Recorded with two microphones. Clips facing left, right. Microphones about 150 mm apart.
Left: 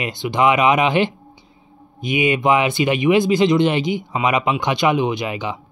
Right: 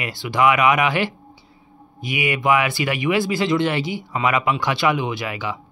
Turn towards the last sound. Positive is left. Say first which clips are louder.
# left 3 dB
turn(degrees=20)  # may be behind; listen again after turning